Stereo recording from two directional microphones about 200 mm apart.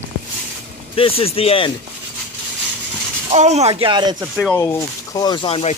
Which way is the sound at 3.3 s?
35° right (ahead or behind).